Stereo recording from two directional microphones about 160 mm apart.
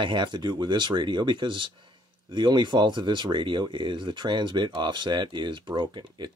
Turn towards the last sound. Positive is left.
turn(degrees=-30)  # may be behind; listen again after turning